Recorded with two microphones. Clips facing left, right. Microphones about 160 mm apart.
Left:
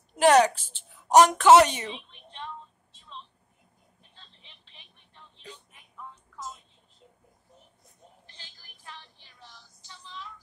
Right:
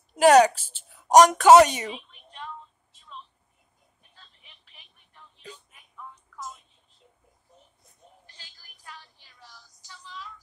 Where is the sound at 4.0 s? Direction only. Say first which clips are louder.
Even; 25° left (ahead or behind).